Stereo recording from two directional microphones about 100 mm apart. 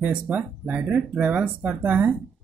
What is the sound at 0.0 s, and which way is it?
Speech, 15° right (ahead or behind).